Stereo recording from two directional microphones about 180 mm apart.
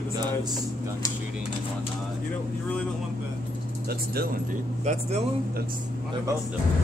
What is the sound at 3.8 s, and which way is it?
Speech, 60° right (ahead or behind).